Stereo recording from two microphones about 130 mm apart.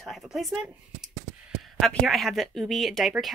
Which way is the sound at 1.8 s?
Centre (ahead or behind).